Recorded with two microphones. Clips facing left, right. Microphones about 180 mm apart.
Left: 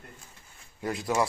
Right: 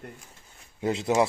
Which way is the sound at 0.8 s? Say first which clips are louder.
Right 4 dB; 20° right (ahead or behind).